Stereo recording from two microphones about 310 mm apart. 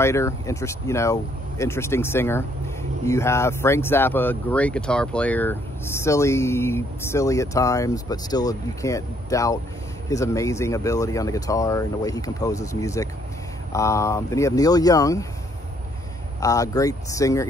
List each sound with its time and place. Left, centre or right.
0.0 s speech: centre
16.3 s speech: centre